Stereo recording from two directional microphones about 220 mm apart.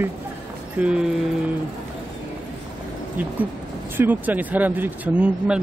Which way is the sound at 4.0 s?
10° right (ahead or behind).